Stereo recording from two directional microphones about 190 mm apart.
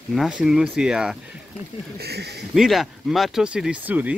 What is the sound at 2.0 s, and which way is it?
Speech, 60° right (ahead or behind).